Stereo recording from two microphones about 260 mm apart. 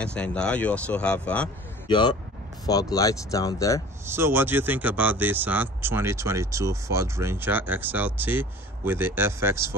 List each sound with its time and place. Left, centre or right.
0.0 s speech: centre
1.9 s speech: centre
4.0 s speech: centre